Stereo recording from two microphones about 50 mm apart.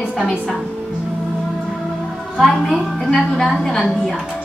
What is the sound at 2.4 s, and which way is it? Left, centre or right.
A woman's voice, centre.